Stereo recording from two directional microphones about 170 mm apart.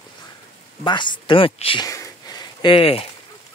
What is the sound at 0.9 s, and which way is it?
Speech, 30° left (ahead or behind).